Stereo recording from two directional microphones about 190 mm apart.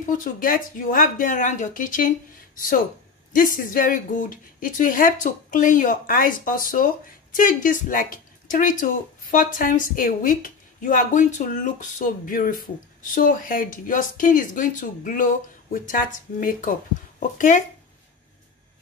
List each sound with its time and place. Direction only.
0.0 s a woman's voice: 45° left (ahead or behind)
3.3 s a woman's voice: 45° left (ahead or behind)